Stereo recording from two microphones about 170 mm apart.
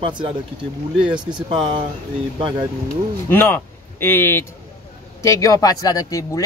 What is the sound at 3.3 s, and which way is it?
Speech, 10° left (ahead or behind).